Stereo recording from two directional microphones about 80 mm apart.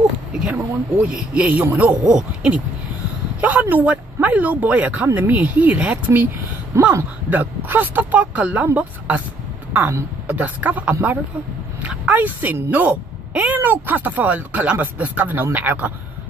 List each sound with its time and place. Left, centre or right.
0.6 s speech: right
6.7 s speech: right
7.2 s speech: right
10.2 s a woman's voice: centre